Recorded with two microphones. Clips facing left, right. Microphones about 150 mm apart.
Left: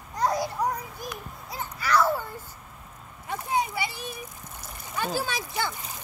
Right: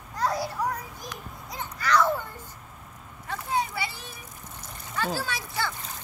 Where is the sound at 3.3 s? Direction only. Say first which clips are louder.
Left 1 dB; 15° left (ahead or behind).